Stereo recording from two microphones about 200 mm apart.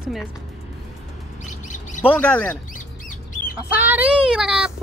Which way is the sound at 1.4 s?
40° left (ahead or behind).